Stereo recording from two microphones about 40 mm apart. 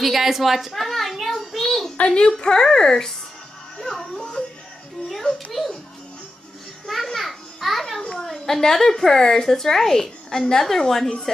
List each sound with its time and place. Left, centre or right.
0.0 s a sound: centre
2.0 s a woman's voice: left
3.7 s music: centre
5.0 s music: centre
5.5 s music: centre
6.9 s a sound: centre
8.2 s a woman's voice: centre